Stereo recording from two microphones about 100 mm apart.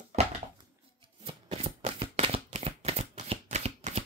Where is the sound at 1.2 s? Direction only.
80° right.